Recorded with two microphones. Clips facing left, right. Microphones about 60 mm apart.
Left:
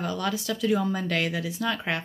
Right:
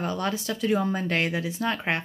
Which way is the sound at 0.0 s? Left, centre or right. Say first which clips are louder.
Right 1 dB; right.